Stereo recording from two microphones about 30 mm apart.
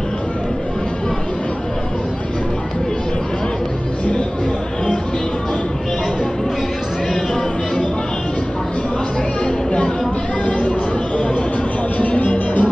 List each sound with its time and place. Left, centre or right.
12.2 s music: left